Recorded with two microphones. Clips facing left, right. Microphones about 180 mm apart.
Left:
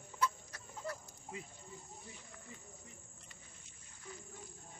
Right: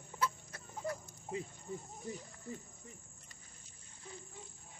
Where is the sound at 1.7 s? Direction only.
50° right (ahead or behind).